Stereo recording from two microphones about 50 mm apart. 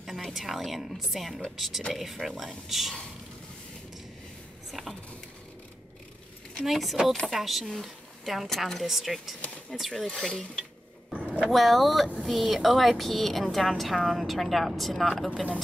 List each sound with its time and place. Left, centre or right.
0.0 s a woman's voice: centre
4.6 s a sound: centre
6.6 s a woman's voice: centre
10.0 s speech: centre
11.1 s a sound: right
11.4 s a woman's voice: centre